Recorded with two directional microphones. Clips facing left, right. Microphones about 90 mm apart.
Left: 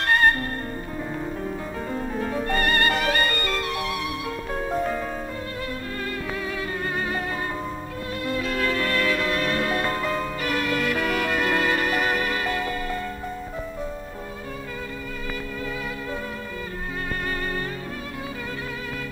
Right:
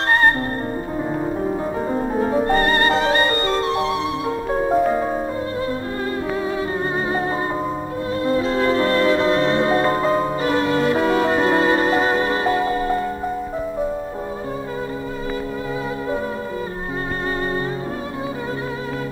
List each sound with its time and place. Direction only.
1.4 s music: 30° right (ahead or behind)
8.2 s music: 30° right (ahead or behind)